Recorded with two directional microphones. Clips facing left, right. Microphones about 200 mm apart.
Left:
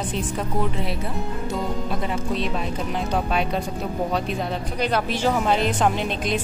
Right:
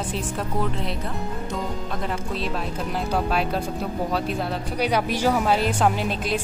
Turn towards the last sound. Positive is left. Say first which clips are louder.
# even
turn(degrees=-5)  # may be behind; listen again after turning